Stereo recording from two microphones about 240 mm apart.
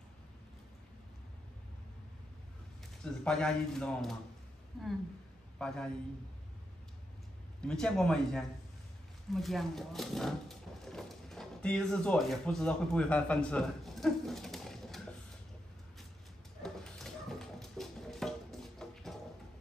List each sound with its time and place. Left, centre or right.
3.0 s a man's voice: centre
7.6 s a man's voice: centre
16.6 s a sound: centre